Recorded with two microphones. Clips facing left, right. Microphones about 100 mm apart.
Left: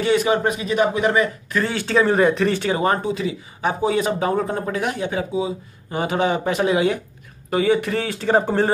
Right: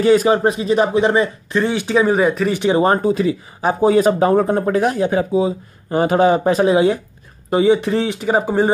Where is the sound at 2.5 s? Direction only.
20° right (ahead or behind).